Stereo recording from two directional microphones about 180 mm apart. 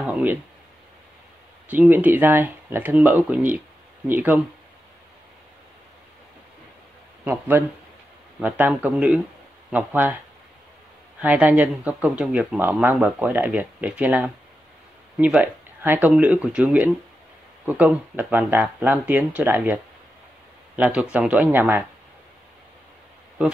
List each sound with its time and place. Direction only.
0.0 s a sound: 10° right (ahead or behind)
1.7 s speech: 10° right (ahead or behind)
7.2 s speech: 10° right (ahead or behind)
11.1 s speech: 10° right (ahead or behind)